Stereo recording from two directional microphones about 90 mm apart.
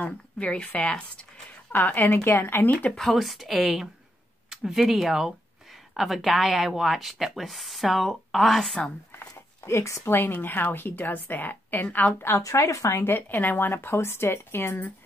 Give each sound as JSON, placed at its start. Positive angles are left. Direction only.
{"t": 0.0, "sound": "a woman's voice", "side_deg": 15}
{"t": 3.0, "sound": "a woman's voice", "side_deg": 0}
{"t": 9.7, "sound": "speech", "side_deg": 35}
{"t": 12.4, "sound": "speech", "side_deg": 35}
{"t": 13.1, "sound": "speech", "side_deg": 20}